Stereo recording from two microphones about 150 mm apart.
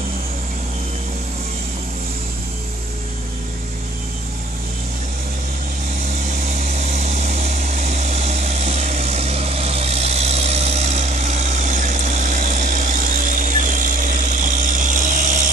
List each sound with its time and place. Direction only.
6.2 s vehicle: 60° right (ahead or behind)